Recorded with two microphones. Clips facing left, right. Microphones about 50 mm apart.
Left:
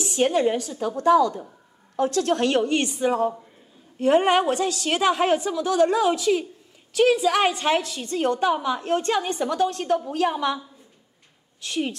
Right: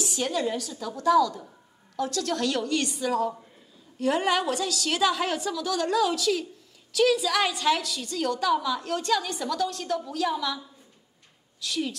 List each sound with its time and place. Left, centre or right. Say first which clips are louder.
0.0 s a woman's voice: left 7 dB; left
11.6 s a woman's voice: left 3 dB; left